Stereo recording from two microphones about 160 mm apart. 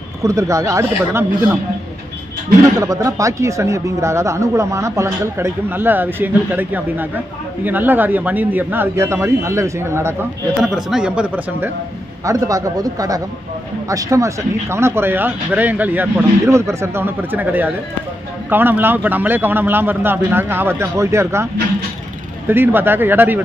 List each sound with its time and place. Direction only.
0.2 s speech: 20° right (ahead or behind)
2.8 s speech: 20° right (ahead or behind)
10.6 s speech: 5° right (ahead or behind)
12.3 s speech: 20° right (ahead or behind)
22.5 s speech: 15° right (ahead or behind)